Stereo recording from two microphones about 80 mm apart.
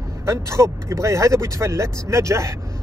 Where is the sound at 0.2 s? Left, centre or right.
Right.